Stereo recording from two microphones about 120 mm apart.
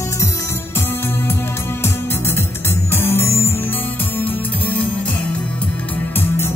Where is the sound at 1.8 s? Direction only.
20° left (ahead or behind).